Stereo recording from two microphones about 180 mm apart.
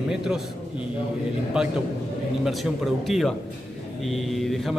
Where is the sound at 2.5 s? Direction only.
Centre (ahead or behind).